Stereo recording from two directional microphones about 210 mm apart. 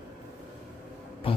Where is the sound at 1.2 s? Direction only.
25° left (ahead or behind).